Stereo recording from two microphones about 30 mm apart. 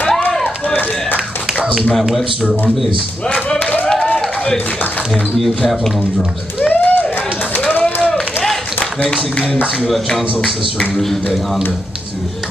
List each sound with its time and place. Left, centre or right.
5.4 s speech: centre
6.7 s a sound: left
9.8 s speech: centre